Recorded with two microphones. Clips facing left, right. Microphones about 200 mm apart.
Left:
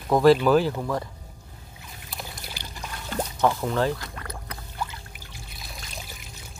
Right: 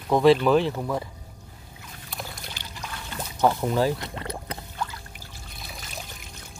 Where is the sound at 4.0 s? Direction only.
25° right (ahead or behind).